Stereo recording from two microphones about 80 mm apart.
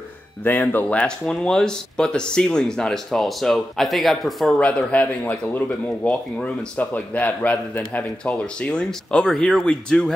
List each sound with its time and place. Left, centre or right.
0.4 s speech: left; by 4.6 s centre
4.6 s a man's voice: centre